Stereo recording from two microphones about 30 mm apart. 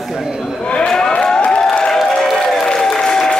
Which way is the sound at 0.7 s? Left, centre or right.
Left.